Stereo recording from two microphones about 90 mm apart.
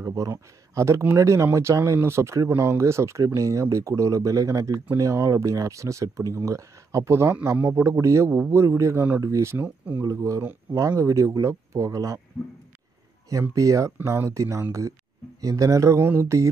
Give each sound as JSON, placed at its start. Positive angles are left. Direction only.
{"t": 0.0, "sound": "speech", "side_deg": -35}
{"t": 13.3, "sound": "speech", "side_deg": -40}